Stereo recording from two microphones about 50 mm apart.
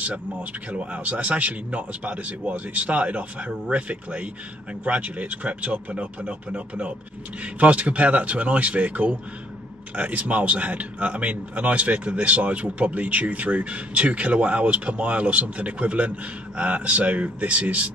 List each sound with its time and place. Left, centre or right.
0.0 s speech: right